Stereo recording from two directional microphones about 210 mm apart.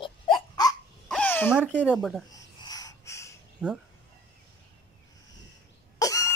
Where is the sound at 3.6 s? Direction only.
5° right (ahead or behind).